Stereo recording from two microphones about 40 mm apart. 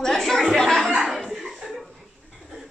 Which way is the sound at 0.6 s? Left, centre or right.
Centre.